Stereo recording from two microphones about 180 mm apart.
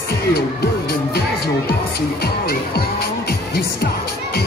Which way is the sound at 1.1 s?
60° left (ahead or behind).